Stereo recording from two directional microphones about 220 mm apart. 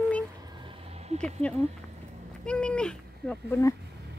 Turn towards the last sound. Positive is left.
turn(degrees=10)  # may be behind; listen again after turning